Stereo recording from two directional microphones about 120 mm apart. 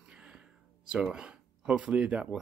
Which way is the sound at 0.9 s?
5° right (ahead or behind).